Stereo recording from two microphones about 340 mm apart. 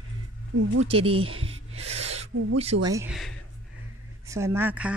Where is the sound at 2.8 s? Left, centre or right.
Centre.